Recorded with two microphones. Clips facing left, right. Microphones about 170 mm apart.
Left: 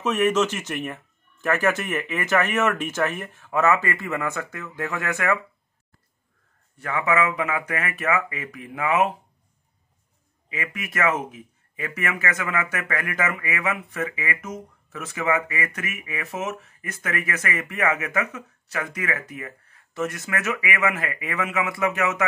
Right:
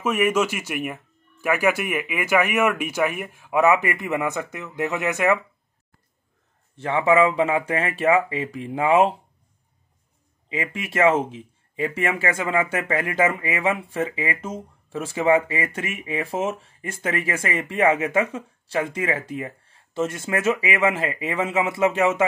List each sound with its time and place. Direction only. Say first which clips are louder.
0.0 s speech: even; 10° right (ahead or behind)
6.8 s speech: right 5 dB; 25° right (ahead or behind)
10.5 s speech: right 4 dB; 25° right (ahead or behind)